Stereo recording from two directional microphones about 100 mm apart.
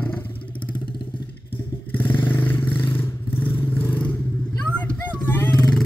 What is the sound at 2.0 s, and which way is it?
Vehicle, 20° left (ahead or behind).